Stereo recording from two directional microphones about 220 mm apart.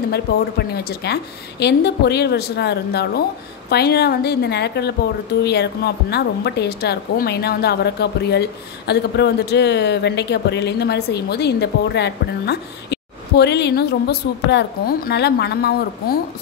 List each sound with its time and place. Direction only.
0.1 s speech: 45° left (ahead or behind)